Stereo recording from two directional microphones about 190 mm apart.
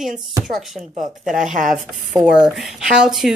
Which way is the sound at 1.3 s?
40° right (ahead or behind).